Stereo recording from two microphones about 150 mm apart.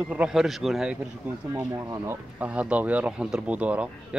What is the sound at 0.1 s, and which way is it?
Speech, 5° right (ahead or behind).